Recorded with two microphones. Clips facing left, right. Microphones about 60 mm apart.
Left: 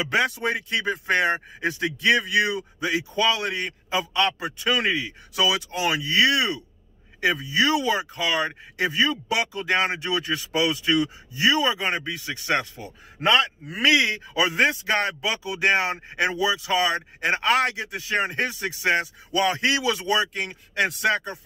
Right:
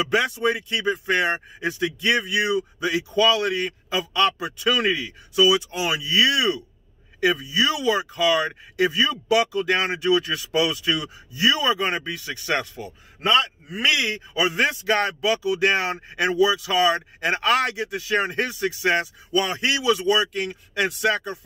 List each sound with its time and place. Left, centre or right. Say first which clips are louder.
0.1 s a man's voice: even; left
5.7 s a man's voice: even; left
7.4 s a man's voice: even; left
13.9 s speech: left 3 dB; left
19.3 s a man's voice: left 1 dB; left